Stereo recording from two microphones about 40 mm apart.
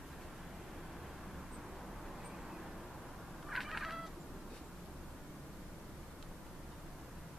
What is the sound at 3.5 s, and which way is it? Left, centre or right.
Cat, centre.